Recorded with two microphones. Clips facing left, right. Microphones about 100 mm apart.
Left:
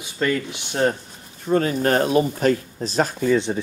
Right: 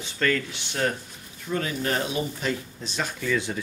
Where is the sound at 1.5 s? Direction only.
40° left (ahead or behind).